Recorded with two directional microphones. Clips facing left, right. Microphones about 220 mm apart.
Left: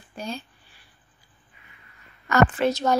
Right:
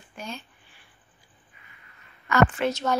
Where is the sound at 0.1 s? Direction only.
35° left (ahead or behind).